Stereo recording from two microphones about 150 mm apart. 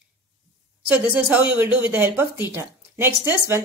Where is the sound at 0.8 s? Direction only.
10° right (ahead or behind).